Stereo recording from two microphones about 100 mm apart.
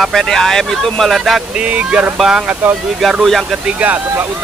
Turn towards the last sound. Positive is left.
turn(degrees=-15)  # may be behind; listen again after turning